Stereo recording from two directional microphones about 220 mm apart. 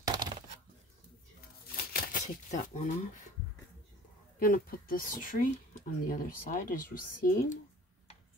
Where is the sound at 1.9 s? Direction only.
35° left (ahead or behind).